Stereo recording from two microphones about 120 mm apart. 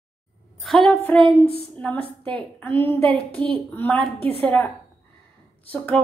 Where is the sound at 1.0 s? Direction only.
15° left (ahead or behind).